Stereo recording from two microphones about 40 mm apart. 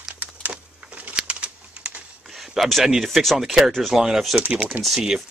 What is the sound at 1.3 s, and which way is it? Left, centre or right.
Bird, right.